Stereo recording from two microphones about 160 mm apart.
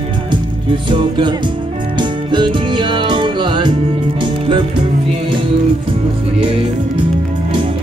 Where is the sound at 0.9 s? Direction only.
30° right (ahead or behind).